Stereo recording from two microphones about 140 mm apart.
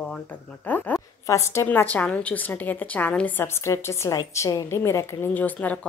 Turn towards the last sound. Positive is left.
turn(degrees=10)  # may be behind; listen again after turning